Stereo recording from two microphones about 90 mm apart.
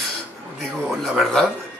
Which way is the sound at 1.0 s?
5° left (ahead or behind).